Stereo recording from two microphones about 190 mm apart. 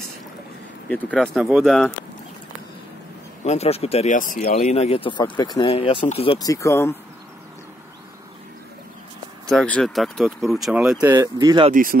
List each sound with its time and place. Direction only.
0.8 s speech: 5° left (ahead or behind)
3.4 s speech: 35° left (ahead or behind)
6.4 s speech: 15° left (ahead or behind)
9.5 s speech: centre (ahead or behind); by 11.7 s 20° right (ahead or behind)
11.7 s speech: 50° right (ahead or behind)